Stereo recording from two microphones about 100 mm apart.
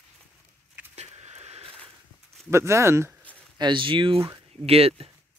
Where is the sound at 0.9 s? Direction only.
90° right.